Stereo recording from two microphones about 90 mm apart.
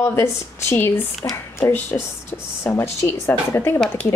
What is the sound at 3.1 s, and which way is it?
Speech, 30° left (ahead or behind).